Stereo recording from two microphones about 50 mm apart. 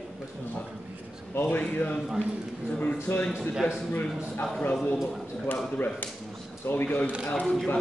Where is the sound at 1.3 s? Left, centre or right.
Left.